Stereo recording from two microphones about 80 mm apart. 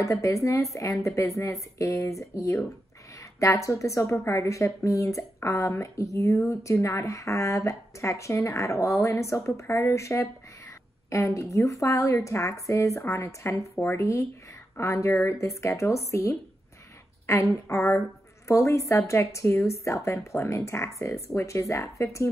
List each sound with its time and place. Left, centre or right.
0.0 s speech: left